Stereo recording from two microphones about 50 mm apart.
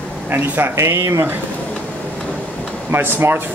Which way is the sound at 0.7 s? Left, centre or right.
Right.